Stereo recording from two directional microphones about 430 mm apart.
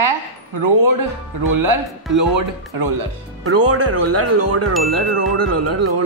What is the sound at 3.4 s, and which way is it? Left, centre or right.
Speech, right.